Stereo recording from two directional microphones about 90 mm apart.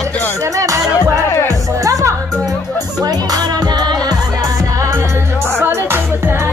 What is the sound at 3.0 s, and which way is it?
Music, 45° right (ahead or behind).